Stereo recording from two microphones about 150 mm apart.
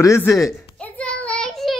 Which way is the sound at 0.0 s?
20° left (ahead or behind).